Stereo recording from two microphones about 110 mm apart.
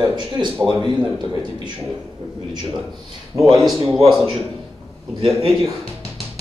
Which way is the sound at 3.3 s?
30° right (ahead or behind).